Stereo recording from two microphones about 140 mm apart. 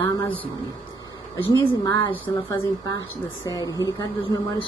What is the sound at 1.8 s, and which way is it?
A woman's voice, 30° left (ahead or behind).